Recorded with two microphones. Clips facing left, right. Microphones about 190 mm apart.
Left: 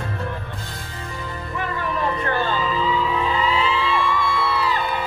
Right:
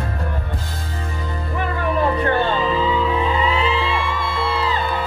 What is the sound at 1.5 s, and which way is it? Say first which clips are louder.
Music: right 5 dB; 30° right (ahead or behind).